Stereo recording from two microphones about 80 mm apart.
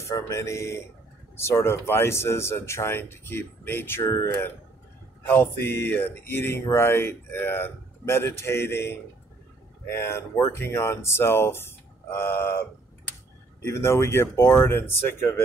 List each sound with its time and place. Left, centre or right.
0.1 s speech: left
5.3 s a sound: left
9.8 s speech: left